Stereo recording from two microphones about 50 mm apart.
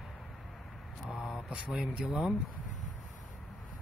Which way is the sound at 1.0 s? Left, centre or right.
Centre.